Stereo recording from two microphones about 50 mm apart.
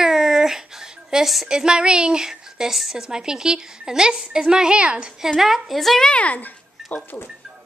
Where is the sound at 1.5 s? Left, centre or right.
Centre.